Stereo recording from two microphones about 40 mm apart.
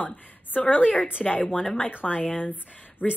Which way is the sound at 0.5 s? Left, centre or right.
Left.